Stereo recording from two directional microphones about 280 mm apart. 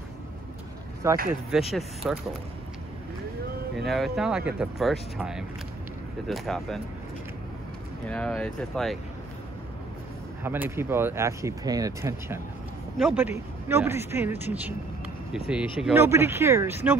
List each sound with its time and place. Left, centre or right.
1.0 s speech: centre
3.8 s speech: centre
8.1 s speech: centre
10.4 s speech: centre